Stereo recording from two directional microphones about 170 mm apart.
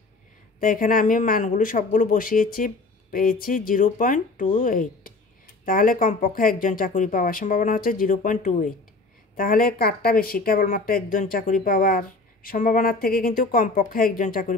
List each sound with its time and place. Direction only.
0.6 s speech: 55° left (ahead or behind)